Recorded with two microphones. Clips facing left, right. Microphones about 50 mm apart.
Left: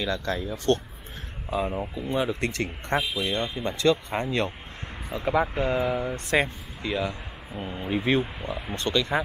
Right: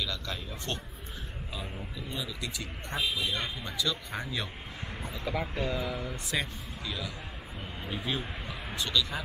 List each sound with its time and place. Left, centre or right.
0.0 s speech: left
1.5 s speech: left
5.2 s speech: left
6.1 s speech: left
6.8 s speech: left
8.2 s speech: centre
8.9 s speech: left